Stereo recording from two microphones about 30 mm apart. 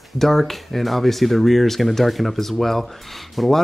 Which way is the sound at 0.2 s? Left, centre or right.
Centre.